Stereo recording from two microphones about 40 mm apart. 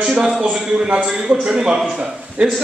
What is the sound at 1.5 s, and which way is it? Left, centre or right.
Speech, centre.